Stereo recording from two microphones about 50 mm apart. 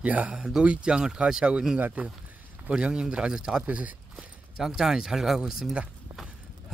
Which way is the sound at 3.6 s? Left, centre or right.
Right.